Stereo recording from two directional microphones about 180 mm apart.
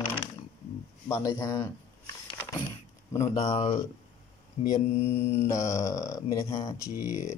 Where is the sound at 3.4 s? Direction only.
30° left (ahead or behind).